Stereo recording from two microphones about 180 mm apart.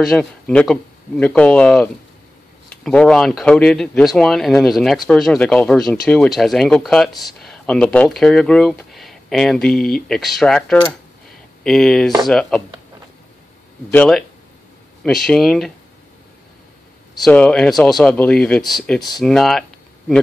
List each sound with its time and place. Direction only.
0.1 s speech: 5° left (ahead or behind)
13.9 s speech: 5° left (ahead or behind)
15.2 s speech: centre (ahead or behind)
17.1 s speech: 5° left (ahead or behind)